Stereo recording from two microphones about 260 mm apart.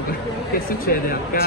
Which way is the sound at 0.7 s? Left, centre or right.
Left.